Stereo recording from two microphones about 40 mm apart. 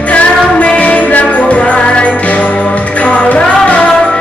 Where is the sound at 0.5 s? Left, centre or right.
Left.